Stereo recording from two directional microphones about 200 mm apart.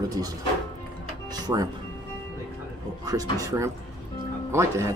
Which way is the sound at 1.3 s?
20° right (ahead or behind).